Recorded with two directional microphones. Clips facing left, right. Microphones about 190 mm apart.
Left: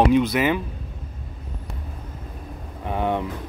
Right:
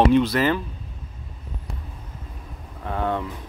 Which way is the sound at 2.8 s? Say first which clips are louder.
Left 2 dB; 15° left (ahead or behind).